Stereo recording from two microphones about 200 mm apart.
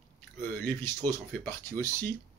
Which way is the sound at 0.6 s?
10° left (ahead or behind).